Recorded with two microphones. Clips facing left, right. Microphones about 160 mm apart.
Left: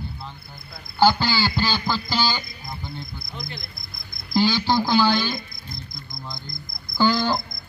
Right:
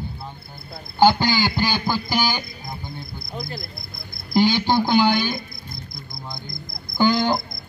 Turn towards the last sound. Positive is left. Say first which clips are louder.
# right 2 dB
turn(degrees=-15)  # may be behind; listen again after turning